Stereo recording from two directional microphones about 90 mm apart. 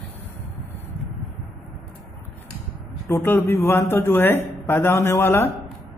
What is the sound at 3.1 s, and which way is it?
A man's voice, 25° left (ahead or behind).